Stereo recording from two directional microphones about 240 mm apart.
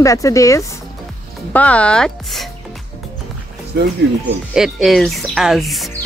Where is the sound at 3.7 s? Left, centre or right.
Right.